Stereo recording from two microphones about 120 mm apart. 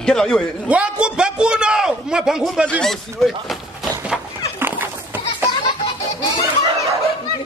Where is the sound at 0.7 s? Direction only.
10° right (ahead or behind).